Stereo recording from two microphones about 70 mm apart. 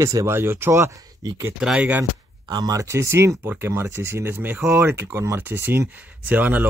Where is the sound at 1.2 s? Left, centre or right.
Right.